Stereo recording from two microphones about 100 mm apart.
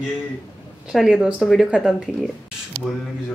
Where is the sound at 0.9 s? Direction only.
5° right (ahead or behind).